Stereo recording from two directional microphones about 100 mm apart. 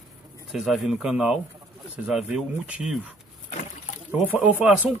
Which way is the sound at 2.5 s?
10° right (ahead or behind).